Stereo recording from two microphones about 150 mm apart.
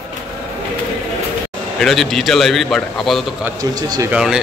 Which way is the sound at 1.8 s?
Centre (ahead or behind).